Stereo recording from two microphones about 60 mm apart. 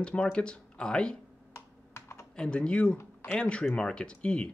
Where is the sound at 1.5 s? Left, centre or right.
Left.